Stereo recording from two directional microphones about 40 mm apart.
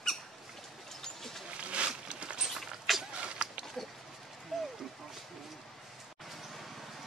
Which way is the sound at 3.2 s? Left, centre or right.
Right.